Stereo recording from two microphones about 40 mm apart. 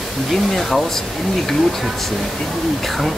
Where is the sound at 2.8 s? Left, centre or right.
Centre.